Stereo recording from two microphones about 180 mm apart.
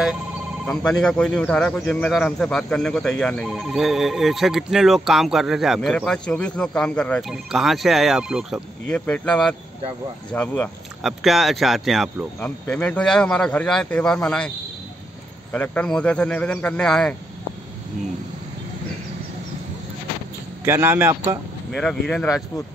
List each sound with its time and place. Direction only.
0.7 s speech: 5° left (ahead or behind)
15.5 s speech: 10° left (ahead or behind)
20.6 s a man's voice: 15° right (ahead or behind)
21.7 s speech: centre (ahead or behind)